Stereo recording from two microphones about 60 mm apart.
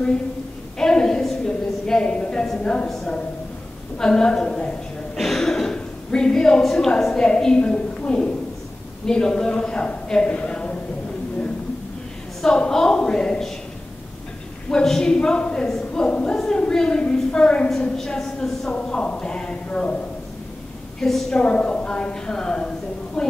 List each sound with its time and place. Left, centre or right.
0.7 s a sound: centre
2.6 s a woman's voice: centre
4.0 s a woman's voice: centre
5.1 s throat clearing: centre
5.8 s a woman's voice: centre
12.4 s a sound: centre
14.7 s speech: centre
16.3 s a sound: centre
17.9 s a woman's voice: centre
18.8 s a sound: centre
21.0 s a woman's voice: centre
21.4 s a woman's voice: centre